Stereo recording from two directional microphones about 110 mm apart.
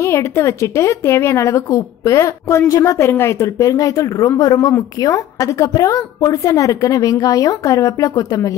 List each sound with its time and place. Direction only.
0.0 s a woman's voice: 25° left (ahead or behind)